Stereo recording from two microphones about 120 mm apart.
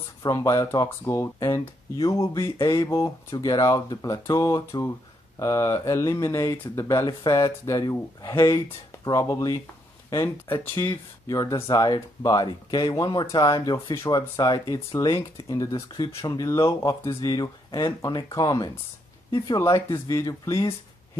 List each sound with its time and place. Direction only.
0.2 s speech: 30° left (ahead or behind)
7.1 s speech: 35° left (ahead or behind)